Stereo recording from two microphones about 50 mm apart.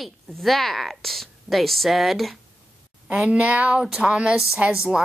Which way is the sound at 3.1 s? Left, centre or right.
Right.